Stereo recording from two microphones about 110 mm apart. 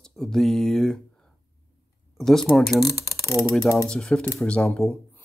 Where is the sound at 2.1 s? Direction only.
Centre (ahead or behind).